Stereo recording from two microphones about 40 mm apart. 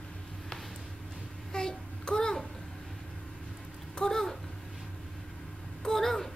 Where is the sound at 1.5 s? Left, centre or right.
Centre.